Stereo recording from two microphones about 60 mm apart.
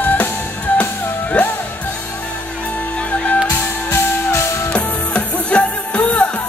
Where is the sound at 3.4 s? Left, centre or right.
Left.